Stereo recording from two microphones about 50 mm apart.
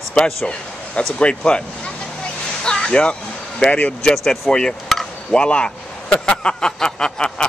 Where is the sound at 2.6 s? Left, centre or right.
Centre.